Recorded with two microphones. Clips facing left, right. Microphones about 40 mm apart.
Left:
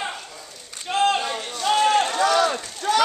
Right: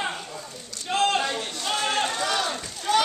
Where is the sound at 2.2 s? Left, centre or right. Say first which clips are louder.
Left 7 dB; left.